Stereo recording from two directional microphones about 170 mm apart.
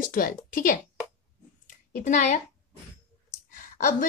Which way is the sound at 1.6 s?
50° left (ahead or behind).